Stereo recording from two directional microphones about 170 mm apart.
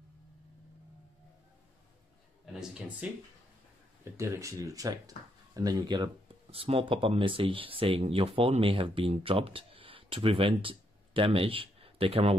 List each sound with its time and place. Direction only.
3.0 s speech: 10° right (ahead or behind); by 12.4 s 35° right (ahead or behind)